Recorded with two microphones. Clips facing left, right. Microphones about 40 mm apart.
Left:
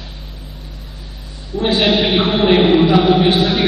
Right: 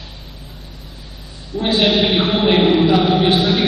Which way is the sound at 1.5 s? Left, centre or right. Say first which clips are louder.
Left 1 dB; centre.